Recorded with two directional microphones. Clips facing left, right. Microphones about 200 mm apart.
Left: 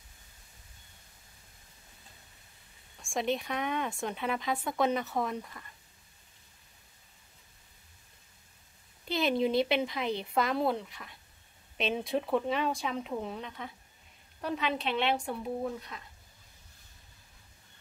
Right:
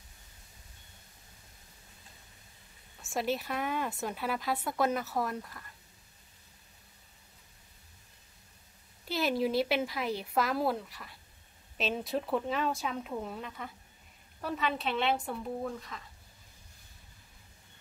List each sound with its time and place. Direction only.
3.0 s speech: 5° right (ahead or behind)
9.1 s speech: 5° right (ahead or behind)